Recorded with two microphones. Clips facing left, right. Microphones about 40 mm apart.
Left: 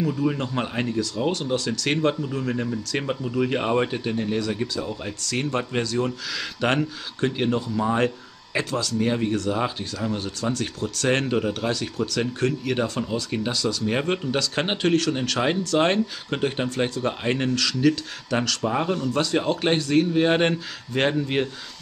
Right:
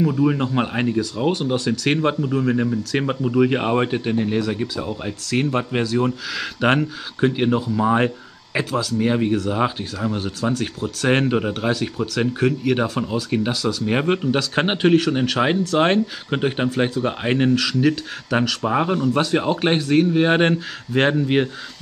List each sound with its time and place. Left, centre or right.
0.0 s speech: centre